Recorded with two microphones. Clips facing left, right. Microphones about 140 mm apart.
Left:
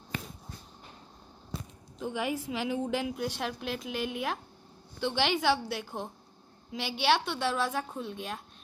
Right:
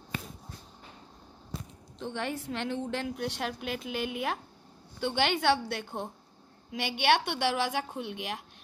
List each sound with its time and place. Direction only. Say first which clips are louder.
2.0 s a woman's voice: left 2 dB; 10° left (ahead or behind)
6.8 s a woman's voice: right 1 dB; 55° right (ahead or behind); by 8.4 s 80° right